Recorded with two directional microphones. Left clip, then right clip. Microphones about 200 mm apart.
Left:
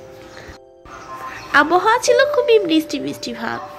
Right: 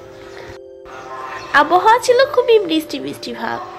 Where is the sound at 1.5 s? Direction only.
15° left (ahead or behind).